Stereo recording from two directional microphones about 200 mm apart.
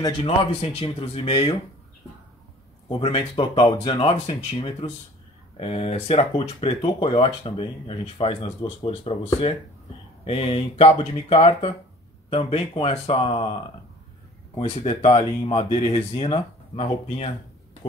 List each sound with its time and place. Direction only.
0.0 s speech: 30° left (ahead or behind)
2.9 s speech: 30° left (ahead or behind)